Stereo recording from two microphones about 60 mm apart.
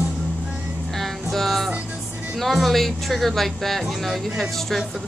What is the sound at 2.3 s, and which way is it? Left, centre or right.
Speech, centre.